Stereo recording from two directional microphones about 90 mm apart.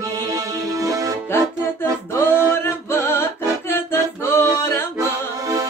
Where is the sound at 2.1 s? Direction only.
25° left (ahead or behind).